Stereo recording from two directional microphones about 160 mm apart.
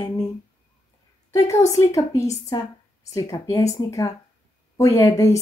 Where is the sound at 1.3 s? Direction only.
20° left (ahead or behind).